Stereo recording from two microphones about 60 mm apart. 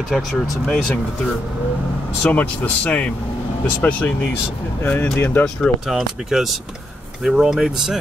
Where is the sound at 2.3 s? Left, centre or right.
Left.